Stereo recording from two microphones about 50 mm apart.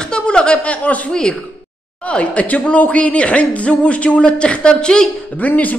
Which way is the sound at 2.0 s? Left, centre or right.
Left.